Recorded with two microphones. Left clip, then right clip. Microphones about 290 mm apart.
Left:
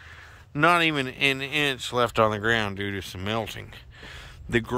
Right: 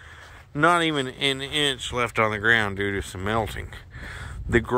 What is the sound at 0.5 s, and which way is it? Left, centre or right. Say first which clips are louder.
Speech: even; centre.